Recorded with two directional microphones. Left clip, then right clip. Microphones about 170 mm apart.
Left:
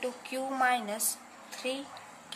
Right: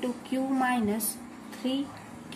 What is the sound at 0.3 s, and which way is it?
Speech, 20° left (ahead or behind).